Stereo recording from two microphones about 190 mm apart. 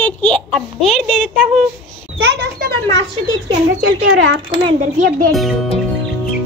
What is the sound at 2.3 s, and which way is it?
Speech, 60° right (ahead or behind).